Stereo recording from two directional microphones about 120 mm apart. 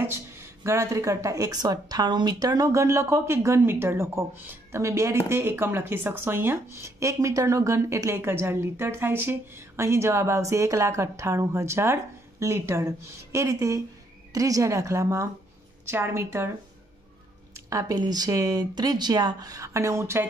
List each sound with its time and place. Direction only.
0.0 s speech: 20° right (ahead or behind)
17.6 s speech: 30° right (ahead or behind)